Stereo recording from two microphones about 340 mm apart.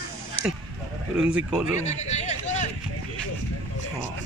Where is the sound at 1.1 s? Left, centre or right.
Centre.